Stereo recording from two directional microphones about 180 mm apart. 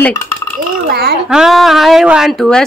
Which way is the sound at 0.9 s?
60° right (ahead or behind).